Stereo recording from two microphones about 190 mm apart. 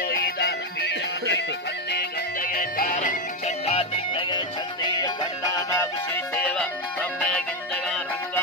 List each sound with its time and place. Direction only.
0.0 s music: 55° left (ahead or behind); by 5.1 s 20° left (ahead or behind)
6.3 s music: 5° left (ahead or behind)